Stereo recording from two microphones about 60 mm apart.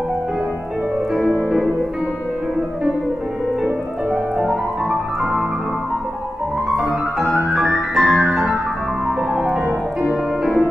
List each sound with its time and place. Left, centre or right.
4.4 s music: centre
6.7 s music: centre